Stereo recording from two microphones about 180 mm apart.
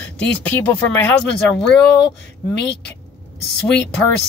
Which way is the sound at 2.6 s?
70° left (ahead or behind).